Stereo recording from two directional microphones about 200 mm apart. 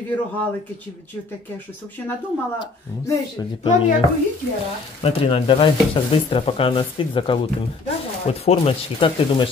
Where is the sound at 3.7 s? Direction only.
35° left (ahead or behind).